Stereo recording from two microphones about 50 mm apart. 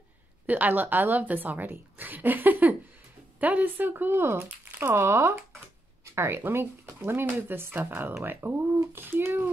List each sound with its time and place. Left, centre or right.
0.5 s a woman's voice: right
6.4 s speech: right